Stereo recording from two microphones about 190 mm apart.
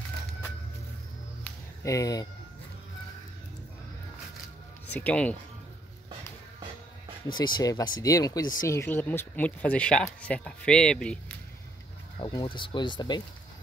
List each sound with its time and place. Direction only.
1.4 s a sound: 15° left (ahead or behind)
4.9 s speech: 5° left (ahead or behind)
7.3 s speech: 25° left (ahead or behind); by 11.3 s 5° left (ahead or behind)
12.2 s speech: 25° left (ahead or behind)